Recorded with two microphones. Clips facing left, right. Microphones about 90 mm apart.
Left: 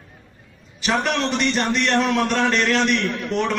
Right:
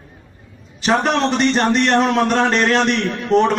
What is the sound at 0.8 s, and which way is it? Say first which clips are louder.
A man's voice: right 5 dB; 35° right (ahead or behind).